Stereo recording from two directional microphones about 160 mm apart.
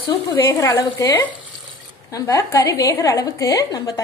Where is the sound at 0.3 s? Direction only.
20° left (ahead or behind).